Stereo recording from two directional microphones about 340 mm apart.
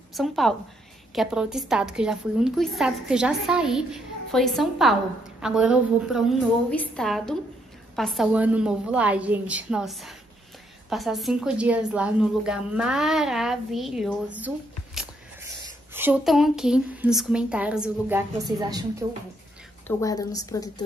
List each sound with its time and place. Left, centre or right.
0.1 s a woman's voice: centre
15.9 s a woman's voice: centre
20.0 s a woman's voice: centre